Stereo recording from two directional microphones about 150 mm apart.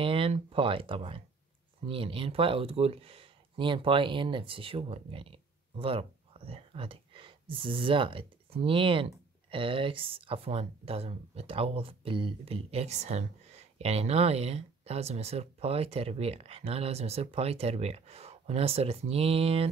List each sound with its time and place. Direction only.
0.0 s speech: 35° right (ahead or behind)